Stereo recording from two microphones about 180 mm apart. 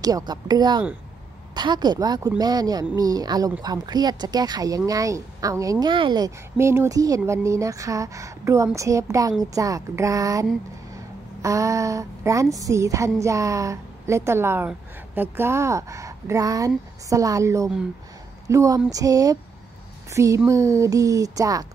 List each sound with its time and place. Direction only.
0.0 s a woman's voice: 20° right (ahead or behind)
11.4 s a woman's voice: 15° right (ahead or behind)